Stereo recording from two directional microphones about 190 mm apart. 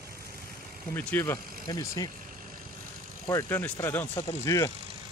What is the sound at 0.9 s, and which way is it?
Speech, 10° left (ahead or behind).